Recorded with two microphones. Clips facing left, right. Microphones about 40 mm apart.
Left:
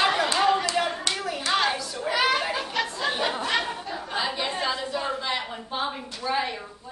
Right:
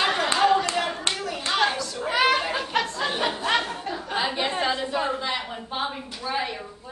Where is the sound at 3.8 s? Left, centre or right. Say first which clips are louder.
Right 2 dB; right.